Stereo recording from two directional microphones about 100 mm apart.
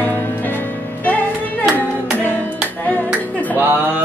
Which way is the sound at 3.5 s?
20° right (ahead or behind).